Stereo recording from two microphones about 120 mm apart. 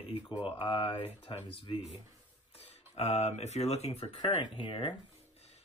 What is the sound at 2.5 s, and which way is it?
Speech, 65° left (ahead or behind).